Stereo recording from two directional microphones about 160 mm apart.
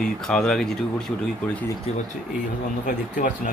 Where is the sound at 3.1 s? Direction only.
55° left (ahead or behind).